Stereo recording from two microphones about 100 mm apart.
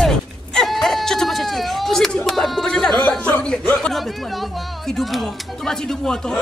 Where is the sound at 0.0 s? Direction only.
5° left (ahead or behind).